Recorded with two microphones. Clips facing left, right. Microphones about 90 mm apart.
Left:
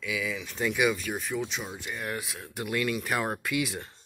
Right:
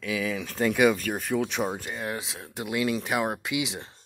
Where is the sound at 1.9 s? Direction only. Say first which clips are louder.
Right 2 dB; 25° right (ahead or behind).